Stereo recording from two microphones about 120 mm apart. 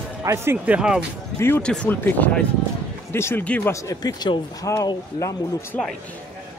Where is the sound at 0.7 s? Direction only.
5° right (ahead or behind).